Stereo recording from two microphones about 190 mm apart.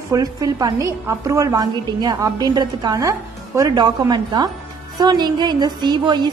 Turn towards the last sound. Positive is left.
turn(degrees=-20)  # may be behind; listen again after turning